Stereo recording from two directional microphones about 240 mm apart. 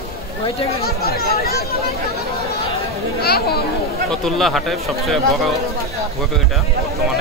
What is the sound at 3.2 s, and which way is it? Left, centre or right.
Speech, left.